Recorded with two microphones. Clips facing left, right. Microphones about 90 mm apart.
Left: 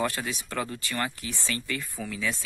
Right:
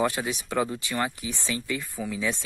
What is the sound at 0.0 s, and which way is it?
Speech, 15° right (ahead or behind).